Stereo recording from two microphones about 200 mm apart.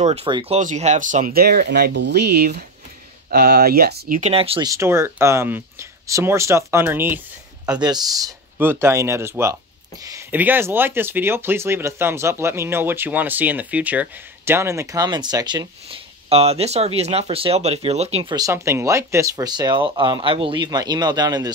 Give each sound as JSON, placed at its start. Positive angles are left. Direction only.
{"t": 0.0, "sound": "speech", "side_deg": -30}
{"t": 4.2, "sound": "speech", "side_deg": -30}
{"t": 4.6, "sound": "speech", "side_deg": -15}